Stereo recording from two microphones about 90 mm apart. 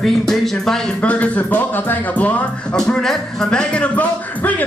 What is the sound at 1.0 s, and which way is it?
Speech, 15° left (ahead or behind).